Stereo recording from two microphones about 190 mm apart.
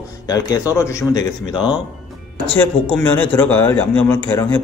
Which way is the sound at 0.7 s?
15° left (ahead or behind).